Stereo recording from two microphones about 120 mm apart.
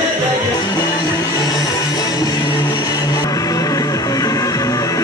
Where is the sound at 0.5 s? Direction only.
35° left (ahead or behind).